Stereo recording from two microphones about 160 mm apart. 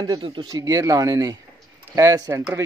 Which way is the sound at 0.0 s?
30° right (ahead or behind).